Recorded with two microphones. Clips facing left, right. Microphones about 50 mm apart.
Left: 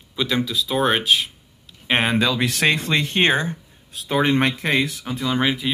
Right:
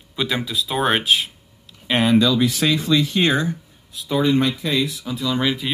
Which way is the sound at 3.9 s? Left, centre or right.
Left.